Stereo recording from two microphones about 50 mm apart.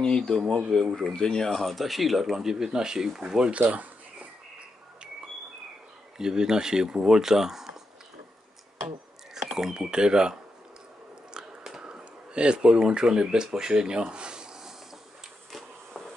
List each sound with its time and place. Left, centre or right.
0.0 s speech: centre
3.5 s a sound: right
6.1 s speech: centre
9.3 s speech: centre
11.3 s biting: centre
11.8 s speech: right